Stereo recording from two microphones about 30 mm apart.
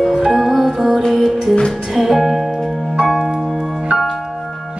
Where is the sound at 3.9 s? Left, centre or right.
Centre.